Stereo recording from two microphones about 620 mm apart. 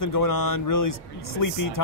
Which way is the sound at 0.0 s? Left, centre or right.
Left.